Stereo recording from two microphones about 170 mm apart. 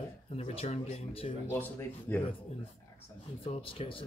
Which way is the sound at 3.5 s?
30° left (ahead or behind).